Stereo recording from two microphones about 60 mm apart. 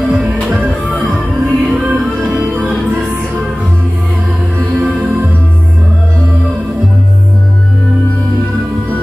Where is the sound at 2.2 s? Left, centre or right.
Right.